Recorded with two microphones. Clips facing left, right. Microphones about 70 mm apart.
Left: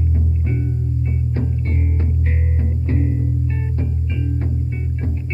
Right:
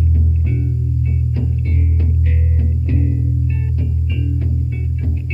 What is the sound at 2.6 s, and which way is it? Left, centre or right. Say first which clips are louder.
Music: left 1 dB; left.